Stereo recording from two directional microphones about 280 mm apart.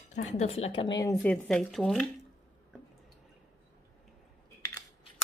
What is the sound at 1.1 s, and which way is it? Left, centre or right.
Speech, centre.